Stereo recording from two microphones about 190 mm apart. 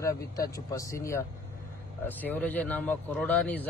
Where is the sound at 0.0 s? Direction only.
15° left (ahead or behind).